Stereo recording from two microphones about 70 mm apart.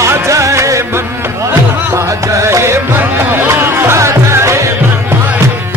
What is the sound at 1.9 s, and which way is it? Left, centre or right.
Music, right.